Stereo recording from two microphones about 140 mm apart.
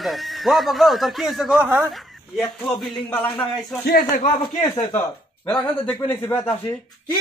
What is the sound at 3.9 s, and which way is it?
Speech, 85° left.